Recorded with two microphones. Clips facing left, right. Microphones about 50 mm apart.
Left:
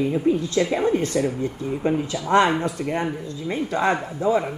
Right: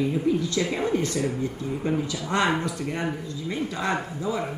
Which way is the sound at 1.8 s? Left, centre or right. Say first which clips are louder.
Left 4 dB; left.